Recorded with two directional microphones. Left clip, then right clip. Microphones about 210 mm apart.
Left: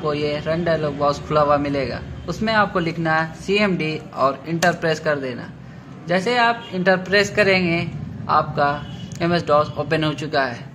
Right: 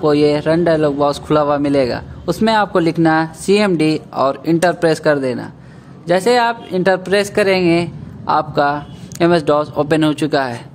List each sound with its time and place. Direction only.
0.0 s a man's voice: 60° right (ahead or behind)